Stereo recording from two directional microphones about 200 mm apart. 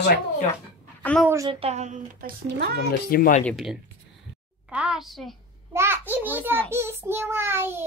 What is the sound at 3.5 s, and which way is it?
Speech, centre (ahead or behind).